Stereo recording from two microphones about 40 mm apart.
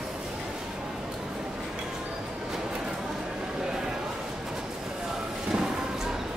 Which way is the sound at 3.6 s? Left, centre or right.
Centre.